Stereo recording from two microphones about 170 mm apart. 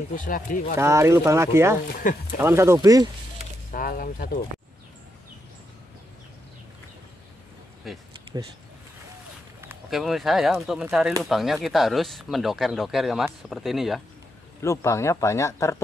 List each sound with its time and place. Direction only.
0.1 s speech: 50° left (ahead or behind)
0.7 s speech: 15° right (ahead or behind)
1.9 s speech: 55° left (ahead or behind)
2.4 s speech: 15° right (ahead or behind)
3.7 s speech: 55° left (ahead or behind)
7.8 s speech: centre (ahead or behind)
9.8 s speech: centre (ahead or behind)
14.6 s speech: 20° left (ahead or behind)